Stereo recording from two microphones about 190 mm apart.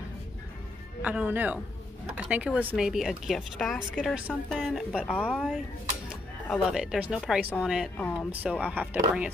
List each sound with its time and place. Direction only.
1.0 s speech: 10° right (ahead or behind); by 5.4 s 10° left (ahead or behind)
6.0 s speech: centre (ahead or behind)